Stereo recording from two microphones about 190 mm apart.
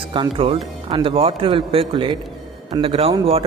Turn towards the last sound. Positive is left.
turn(degrees=-30)  # may be behind; listen again after turning